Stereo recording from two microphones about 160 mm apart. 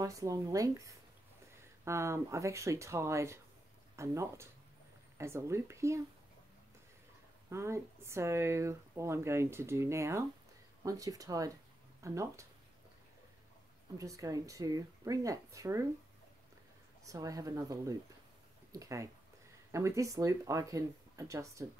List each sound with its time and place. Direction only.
0.0 s speech: 20° right (ahead or behind)
7.4 s speech: 15° right (ahead or behind)
13.9 s speech: 20° right (ahead or behind)
17.0 s speech: 20° right (ahead or behind)